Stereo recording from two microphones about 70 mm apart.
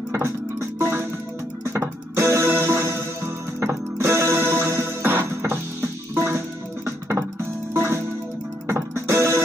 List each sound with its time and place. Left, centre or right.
0.1 s music: right